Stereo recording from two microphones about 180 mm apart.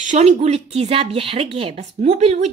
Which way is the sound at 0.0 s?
40° right (ahead or behind).